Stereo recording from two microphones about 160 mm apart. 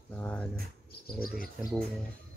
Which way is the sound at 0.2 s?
10° left (ahead or behind).